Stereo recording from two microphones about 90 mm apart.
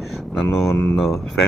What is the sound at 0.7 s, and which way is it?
Speech, 30° left (ahead or behind).